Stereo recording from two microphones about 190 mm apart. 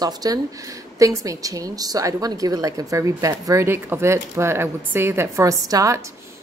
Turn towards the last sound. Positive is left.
turn(degrees=-15)  # may be behind; listen again after turning